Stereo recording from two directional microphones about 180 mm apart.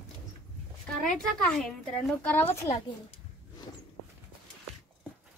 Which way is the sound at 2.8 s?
25° left (ahead or behind).